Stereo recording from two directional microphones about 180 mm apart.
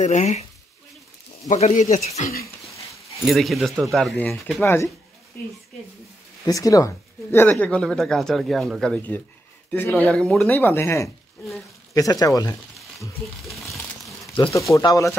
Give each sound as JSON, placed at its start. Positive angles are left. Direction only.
{"t": 0.0, "sound": "speech", "side_deg": 40}
{"t": 1.5, "sound": "speech", "side_deg": 40}
{"t": 2.4, "sound": "a sound", "side_deg": 15}
{"t": 3.3, "sound": "speech", "side_deg": 0}
{"t": 6.4, "sound": "speech", "side_deg": 20}
{"t": 13.4, "sound": "speech", "side_deg": 0}
{"t": 14.5, "sound": "speech", "side_deg": 15}